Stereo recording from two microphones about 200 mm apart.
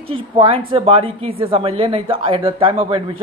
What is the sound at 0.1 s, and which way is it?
A woman's voice, 25° right (ahead or behind).